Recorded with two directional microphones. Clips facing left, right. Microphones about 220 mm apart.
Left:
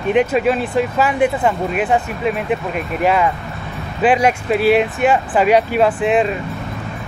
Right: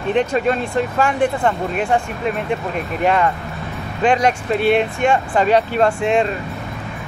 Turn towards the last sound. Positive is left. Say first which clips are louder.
# left 1 dB
turn(degrees=5)  # may be behind; listen again after turning